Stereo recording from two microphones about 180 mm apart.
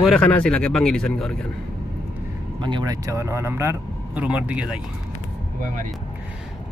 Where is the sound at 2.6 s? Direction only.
25° right (ahead or behind); by 4.8 s 5° right (ahead or behind).